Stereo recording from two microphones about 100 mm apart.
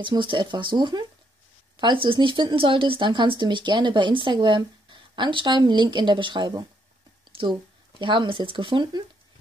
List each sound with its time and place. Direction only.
0.0 s speech: 55° right (ahead or behind)
8.0 s speech: 55° right (ahead or behind)